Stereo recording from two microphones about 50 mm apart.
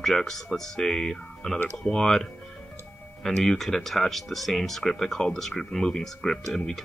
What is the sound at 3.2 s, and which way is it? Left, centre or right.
Speech, centre.